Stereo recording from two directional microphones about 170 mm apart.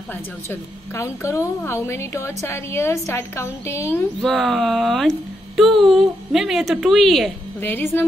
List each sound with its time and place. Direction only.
0.5 s a woman's voice: 15° left (ahead or behind)
4.2 s speech: centre (ahead or behind)
7.6 s a woman's voice: 15° left (ahead or behind)